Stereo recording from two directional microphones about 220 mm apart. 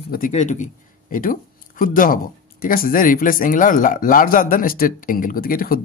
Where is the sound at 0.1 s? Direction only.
35° left (ahead or behind).